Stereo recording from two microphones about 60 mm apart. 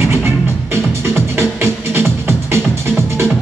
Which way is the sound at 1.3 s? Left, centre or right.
Right.